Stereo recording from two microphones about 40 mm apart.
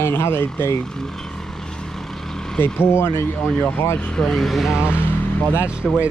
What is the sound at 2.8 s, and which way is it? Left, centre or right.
Speech, left.